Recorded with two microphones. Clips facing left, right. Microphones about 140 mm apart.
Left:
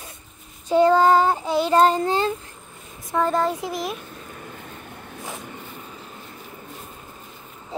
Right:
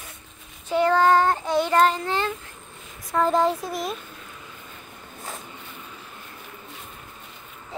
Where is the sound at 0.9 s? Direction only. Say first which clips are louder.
Left 2 dB; 10° left (ahead or behind).